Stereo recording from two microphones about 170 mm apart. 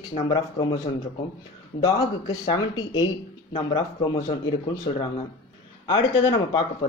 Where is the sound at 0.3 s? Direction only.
25° left (ahead or behind).